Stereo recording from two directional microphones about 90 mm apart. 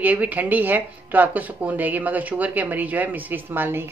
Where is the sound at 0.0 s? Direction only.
20° right (ahead or behind).